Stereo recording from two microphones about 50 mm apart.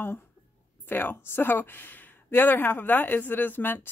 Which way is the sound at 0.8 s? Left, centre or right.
Left.